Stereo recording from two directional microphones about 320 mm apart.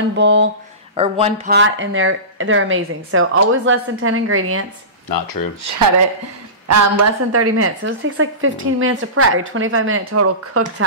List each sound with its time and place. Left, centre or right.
0.1 s a woman's voice: right
0.9 s speech: centre
1.5 s a woman's voice: right
5.1 s speech: left
6.7 s a woman's voice: right